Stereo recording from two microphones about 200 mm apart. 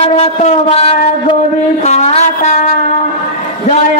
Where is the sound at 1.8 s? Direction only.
35° left (ahead or behind).